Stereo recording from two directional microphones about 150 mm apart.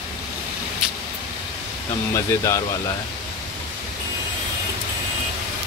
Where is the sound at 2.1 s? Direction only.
20° left (ahead or behind).